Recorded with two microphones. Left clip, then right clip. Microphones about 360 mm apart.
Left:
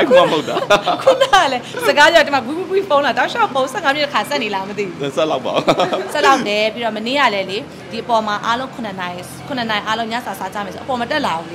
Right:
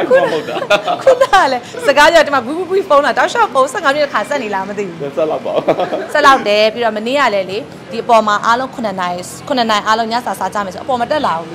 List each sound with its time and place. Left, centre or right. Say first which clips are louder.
0.0 s speech: even; left
1.2 s speech: right 3 dB; centre
5.1 s speech: right 2 dB; left
6.1 s a woman's voice: right 6 dB; centre
11.0 s speech: right 4 dB; centre